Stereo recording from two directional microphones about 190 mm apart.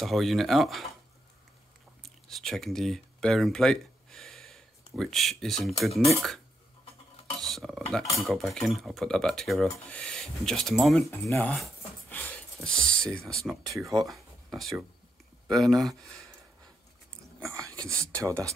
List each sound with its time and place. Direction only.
0.0 s cutlery: centre (ahead or behind)
2.0 s speech: centre (ahead or behind)
7.3 s cutlery: centre (ahead or behind)
14.0 s speech: centre (ahead or behind)
17.5 s a sound: 15° right (ahead or behind)
17.7 s speech: 5° left (ahead or behind)